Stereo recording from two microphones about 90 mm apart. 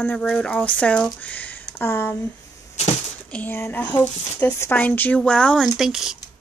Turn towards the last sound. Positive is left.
turn(degrees=-5)  # may be behind; listen again after turning